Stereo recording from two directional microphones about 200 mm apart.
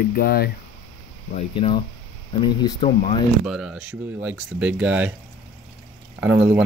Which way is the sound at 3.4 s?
Centre (ahead or behind).